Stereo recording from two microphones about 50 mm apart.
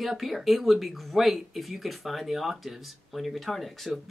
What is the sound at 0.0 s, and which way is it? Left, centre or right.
Speech, centre.